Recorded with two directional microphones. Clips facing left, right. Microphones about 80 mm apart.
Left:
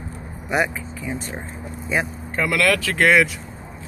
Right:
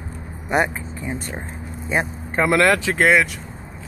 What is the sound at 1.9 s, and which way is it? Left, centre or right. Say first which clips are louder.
Speech: right 1 dB; right.